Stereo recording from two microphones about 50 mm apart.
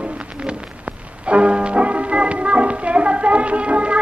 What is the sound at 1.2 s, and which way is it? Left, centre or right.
Music, right.